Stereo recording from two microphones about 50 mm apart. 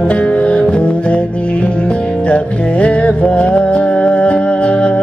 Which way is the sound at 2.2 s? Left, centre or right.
Left.